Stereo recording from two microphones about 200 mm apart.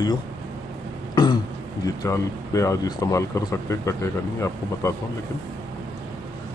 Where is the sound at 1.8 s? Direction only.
15° left (ahead or behind).